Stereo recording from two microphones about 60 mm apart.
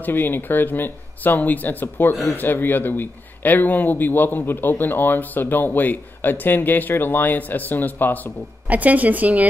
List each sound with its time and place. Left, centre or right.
0.0 s a man's voice: left
8.6 s speech: right